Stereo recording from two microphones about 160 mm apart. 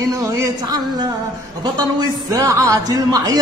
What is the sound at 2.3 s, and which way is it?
Music, 20° right (ahead or behind).